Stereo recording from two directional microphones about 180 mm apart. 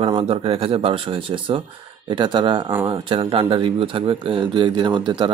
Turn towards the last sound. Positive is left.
turn(degrees=-25)  # may be behind; listen again after turning